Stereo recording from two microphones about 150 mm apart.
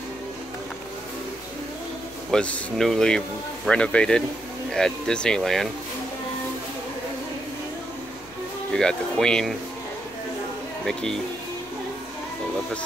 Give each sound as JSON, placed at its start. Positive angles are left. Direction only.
{"t": 2.3, "sound": "speech", "side_deg": 5}
{"t": 8.7, "sound": "speech", "side_deg": 5}
{"t": 10.9, "sound": "speech", "side_deg": 5}